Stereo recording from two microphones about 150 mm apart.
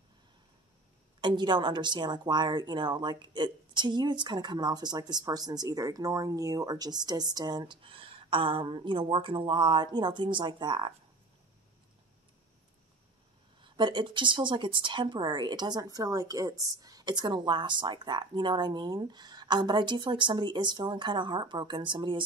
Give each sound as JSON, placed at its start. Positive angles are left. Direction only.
{"t": 1.2, "sound": "speech", "side_deg": -30}
{"t": 13.6, "sound": "speech", "side_deg": -30}